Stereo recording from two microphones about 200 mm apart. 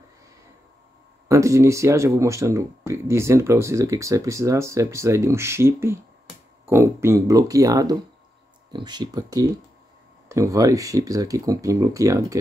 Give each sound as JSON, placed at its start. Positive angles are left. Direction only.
{"t": 1.3, "sound": "speech", "side_deg": -15}